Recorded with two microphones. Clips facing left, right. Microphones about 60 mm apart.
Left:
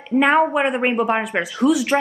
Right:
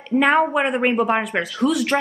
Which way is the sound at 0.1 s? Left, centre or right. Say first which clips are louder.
Left 1 dB; centre.